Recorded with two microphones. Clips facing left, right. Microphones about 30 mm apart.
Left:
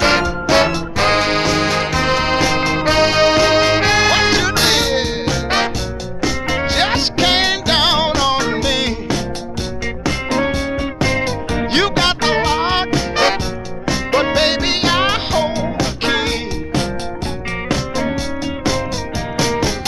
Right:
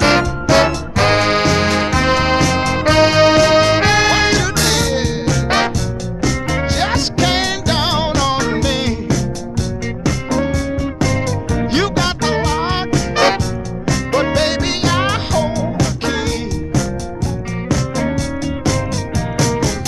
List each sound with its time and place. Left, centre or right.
0.0 s music: left
1.3 s music: centre
2.3 s music: left
8.1 s music: centre
10.0 s music: left
19.3 s music: left